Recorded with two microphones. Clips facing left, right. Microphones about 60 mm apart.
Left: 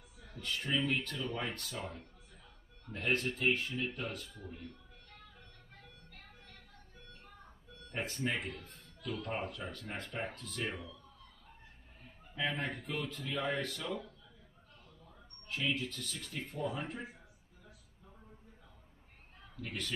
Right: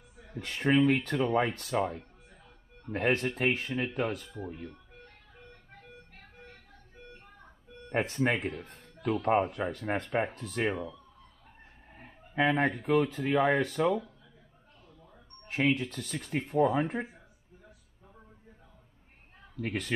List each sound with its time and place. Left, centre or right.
0.4 s speech: right
7.9 s speech: right
8.6 s music: right
9.0 s speech: right
9.3 s speech: right
12.0 s a sound: right
12.8 s speech: right
15.5 s speech: right
19.6 s speech: right